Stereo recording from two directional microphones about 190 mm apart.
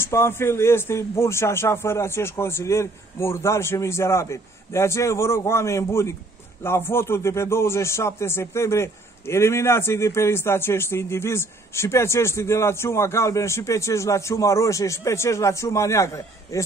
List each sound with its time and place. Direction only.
0.0 s a man's voice: 15° left (ahead or behind)